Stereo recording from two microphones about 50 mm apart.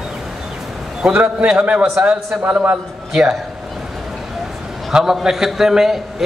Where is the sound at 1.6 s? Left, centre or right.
Right.